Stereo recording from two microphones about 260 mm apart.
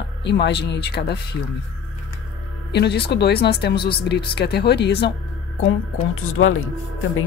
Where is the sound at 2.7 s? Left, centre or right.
Left.